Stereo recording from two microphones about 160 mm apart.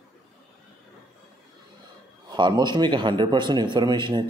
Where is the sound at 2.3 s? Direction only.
30° right (ahead or behind).